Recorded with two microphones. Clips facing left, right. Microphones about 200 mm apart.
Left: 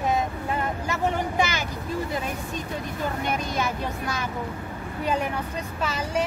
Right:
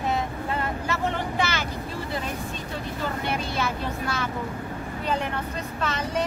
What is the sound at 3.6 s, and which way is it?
Speech, 15° left (ahead or behind).